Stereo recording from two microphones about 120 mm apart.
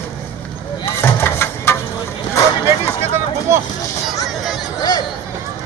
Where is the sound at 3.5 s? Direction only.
25° right (ahead or behind).